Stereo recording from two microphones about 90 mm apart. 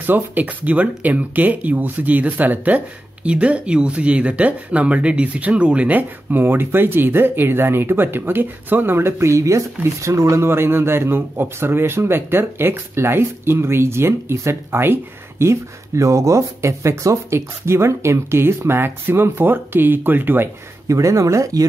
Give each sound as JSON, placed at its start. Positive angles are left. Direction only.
{"t": 0.0, "sound": "a man's voice", "side_deg": -20}
{"t": 20.9, "sound": "speech", "side_deg": -35}